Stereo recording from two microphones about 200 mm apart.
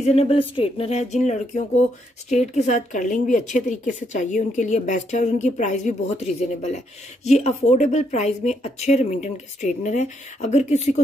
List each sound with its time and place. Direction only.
0.0 s speech: 30° left (ahead or behind)